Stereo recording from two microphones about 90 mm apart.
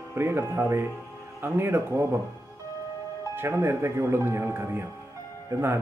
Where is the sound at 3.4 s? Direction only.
30° right (ahead or behind).